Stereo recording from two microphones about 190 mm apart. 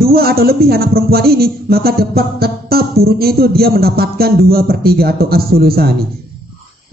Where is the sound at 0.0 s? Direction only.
55° right (ahead or behind).